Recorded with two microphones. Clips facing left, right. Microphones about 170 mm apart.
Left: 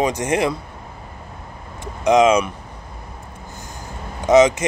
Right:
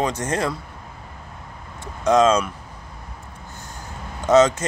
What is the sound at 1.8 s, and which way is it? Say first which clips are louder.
Speech: left 2 dB; 15° left (ahead or behind).